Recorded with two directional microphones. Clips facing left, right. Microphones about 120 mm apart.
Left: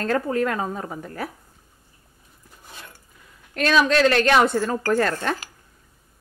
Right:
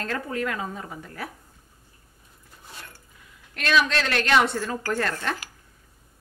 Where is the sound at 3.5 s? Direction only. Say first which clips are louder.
Left 5 dB; 40° left (ahead or behind).